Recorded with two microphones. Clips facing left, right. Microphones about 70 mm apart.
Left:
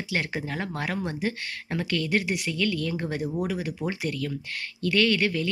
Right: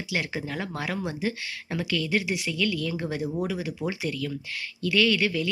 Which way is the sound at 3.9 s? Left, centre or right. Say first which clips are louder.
Even; left.